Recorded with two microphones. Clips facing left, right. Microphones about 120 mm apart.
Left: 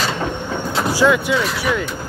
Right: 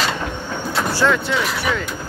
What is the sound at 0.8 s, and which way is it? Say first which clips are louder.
Speech: left 3 dB; 10° left (ahead or behind).